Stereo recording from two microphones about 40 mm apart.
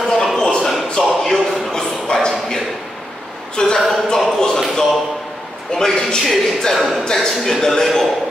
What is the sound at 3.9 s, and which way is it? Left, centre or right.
Speech, centre.